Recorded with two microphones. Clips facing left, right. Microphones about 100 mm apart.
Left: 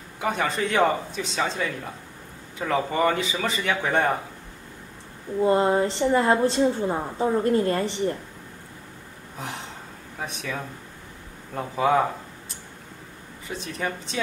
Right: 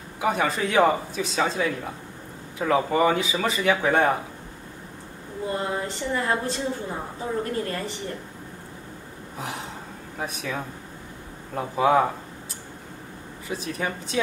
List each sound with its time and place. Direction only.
0.2 s speech: centre (ahead or behind)
5.4 s a woman's voice: 35° left (ahead or behind)
9.4 s speech: centre (ahead or behind)
13.5 s speech: 5° right (ahead or behind)